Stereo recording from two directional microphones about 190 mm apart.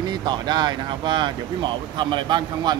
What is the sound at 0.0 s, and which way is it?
Speech, 20° right (ahead or behind).